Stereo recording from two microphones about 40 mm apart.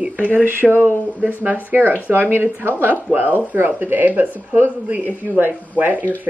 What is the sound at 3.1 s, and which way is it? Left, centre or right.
Speech, right.